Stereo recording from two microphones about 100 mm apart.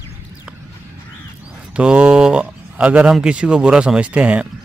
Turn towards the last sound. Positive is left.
turn(degrees=-15)  # may be behind; listen again after turning